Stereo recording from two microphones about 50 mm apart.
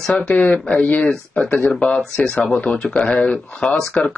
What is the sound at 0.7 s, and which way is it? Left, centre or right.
Speech, left.